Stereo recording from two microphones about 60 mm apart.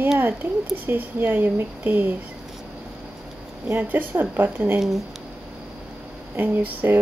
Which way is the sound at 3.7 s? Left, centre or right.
Right.